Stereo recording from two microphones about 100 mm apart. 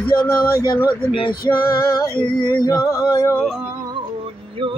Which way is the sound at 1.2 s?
50° left (ahead or behind).